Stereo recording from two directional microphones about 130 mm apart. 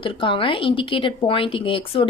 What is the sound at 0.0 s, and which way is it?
A woman's voice, 40° left (ahead or behind).